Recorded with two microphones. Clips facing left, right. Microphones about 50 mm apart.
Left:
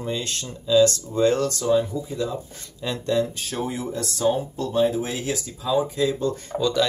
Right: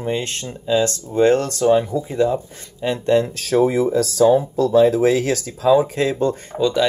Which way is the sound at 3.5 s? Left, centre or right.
Right.